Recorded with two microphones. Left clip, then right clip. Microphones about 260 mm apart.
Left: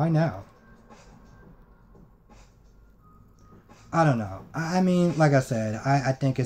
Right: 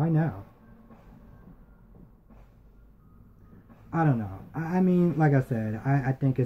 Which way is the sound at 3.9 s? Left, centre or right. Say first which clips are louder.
Left 5 dB; centre.